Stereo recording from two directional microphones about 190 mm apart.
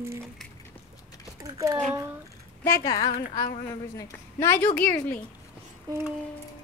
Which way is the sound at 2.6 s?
20° left (ahead or behind).